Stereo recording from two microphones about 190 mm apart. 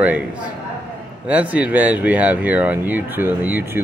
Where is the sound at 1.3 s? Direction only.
5° right (ahead or behind).